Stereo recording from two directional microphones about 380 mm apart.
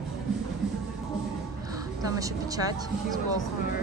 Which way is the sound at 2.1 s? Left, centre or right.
Centre.